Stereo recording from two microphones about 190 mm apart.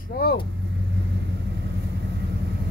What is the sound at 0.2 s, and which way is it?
Speech, 55° left (ahead or behind).